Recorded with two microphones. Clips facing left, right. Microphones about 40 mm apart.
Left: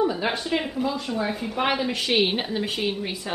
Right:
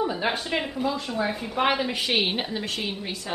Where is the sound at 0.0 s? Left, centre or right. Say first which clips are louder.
Left 2 dB; centre.